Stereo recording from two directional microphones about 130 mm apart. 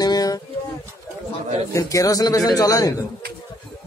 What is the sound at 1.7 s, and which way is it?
A man's voice, 25° left (ahead or behind).